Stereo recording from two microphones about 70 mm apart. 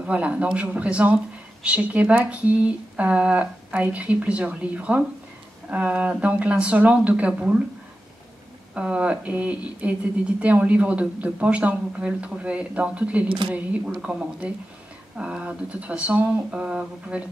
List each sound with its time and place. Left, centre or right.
0.0 s speech: centre
8.7 s speech: centre